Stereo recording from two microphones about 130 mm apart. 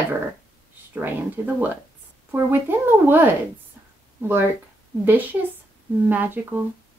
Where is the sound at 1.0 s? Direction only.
15° right (ahead or behind).